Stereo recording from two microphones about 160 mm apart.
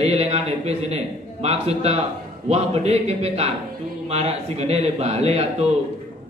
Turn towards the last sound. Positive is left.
turn(degrees=-40)  # may be behind; listen again after turning